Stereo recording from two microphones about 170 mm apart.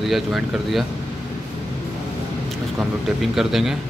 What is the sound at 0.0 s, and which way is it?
Speech, centre (ahead or behind).